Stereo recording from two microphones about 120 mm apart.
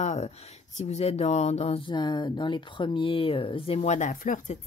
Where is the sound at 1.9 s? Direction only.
40° left (ahead or behind); by 4.6 s 90° left.